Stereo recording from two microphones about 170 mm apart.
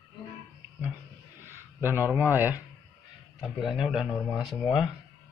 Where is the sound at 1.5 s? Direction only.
15° right (ahead or behind).